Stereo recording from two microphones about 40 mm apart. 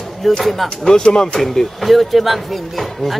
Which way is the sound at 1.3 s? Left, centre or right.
Centre.